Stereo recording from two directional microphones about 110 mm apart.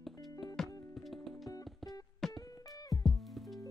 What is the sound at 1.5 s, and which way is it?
Music, 35° left (ahead or behind).